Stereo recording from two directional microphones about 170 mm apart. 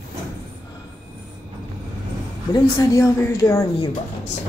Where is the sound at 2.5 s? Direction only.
20° left (ahead or behind).